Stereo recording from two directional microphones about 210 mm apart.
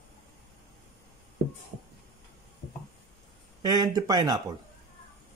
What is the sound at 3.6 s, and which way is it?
Speech, 15° right (ahead or behind).